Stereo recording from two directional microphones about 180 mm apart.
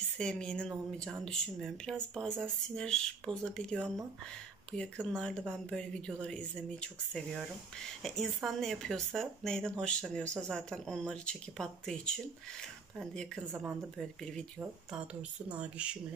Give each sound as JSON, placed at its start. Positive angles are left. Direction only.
{"t": 0.2, "sound": "speech", "side_deg": 5}
{"t": 13.4, "sound": "speech", "side_deg": -10}